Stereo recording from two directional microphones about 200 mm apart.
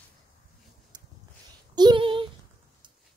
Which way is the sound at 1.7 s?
25° right (ahead or behind).